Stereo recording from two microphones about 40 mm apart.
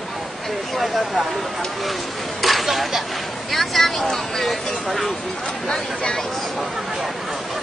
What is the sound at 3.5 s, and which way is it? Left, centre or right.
Speech, centre.